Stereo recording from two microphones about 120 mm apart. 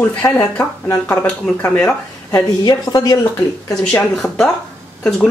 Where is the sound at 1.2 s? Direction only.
10° left (ahead or behind).